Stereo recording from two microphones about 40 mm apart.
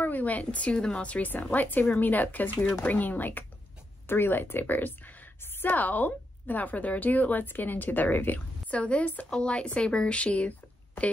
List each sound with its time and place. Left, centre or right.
0.0 s speech: left
0.7 s speech: left
1.4 s a woman's voice: left
4.1 s a woman's voice: left
8.7 s a woman's voice: left
9.3 s speech: left